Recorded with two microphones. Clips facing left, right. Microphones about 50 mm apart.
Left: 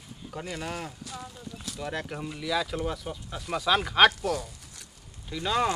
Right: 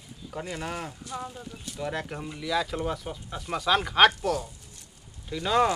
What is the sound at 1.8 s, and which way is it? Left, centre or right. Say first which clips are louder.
Speech: right 2 dB; centre.